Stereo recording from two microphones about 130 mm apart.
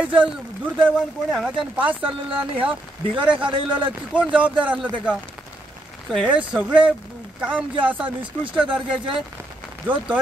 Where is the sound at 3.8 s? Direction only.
10° right (ahead or behind).